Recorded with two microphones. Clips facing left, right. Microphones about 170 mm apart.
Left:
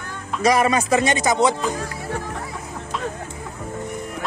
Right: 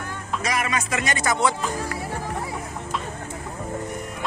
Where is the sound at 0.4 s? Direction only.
35° left (ahead or behind); by 1.5 s 20° left (ahead or behind).